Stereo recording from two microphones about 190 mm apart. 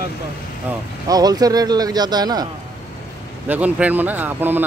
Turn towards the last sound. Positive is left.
turn(degrees=-10)  # may be behind; listen again after turning